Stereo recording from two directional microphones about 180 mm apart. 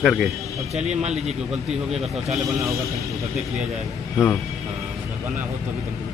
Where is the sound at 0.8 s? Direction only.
35° right (ahead or behind).